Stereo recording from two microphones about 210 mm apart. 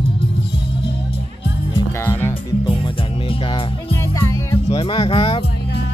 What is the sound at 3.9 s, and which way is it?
Music, 15° left (ahead or behind).